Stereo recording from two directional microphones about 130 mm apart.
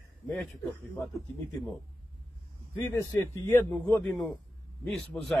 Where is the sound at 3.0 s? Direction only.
20° left (ahead or behind).